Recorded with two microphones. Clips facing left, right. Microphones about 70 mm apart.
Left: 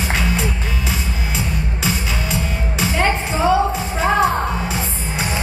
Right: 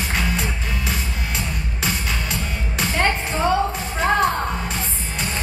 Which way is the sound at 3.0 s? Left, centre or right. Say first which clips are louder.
Left 4 dB; centre.